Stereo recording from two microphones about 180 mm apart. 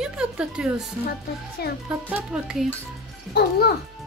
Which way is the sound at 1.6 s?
60° left (ahead or behind).